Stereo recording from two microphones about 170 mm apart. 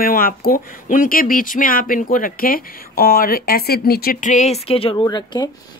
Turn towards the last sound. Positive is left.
turn(degrees=25)  # may be behind; listen again after turning